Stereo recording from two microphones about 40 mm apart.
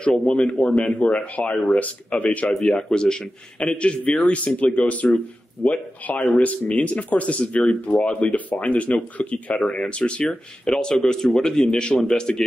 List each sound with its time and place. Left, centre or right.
0.0 s speech: left
2.7 s speech: centre; by 6.2 s left
6.2 s speech: left
10.7 s a man's voice: centre